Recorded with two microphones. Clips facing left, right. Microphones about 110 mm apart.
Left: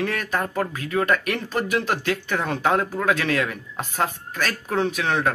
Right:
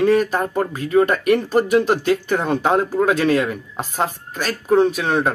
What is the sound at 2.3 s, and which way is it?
Speech, 20° right (ahead or behind).